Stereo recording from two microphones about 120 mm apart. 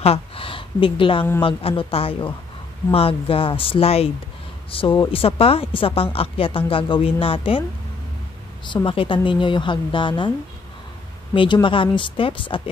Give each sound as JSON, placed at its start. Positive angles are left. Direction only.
{"t": 0.0, "sound": "a woman's voice", "side_deg": 50}
{"t": 8.8, "sound": "a woman's voice", "side_deg": 45}
{"t": 11.3, "sound": "a woman's voice", "side_deg": 40}